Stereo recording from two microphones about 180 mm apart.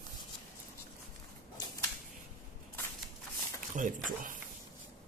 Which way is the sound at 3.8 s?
50° right (ahead or behind).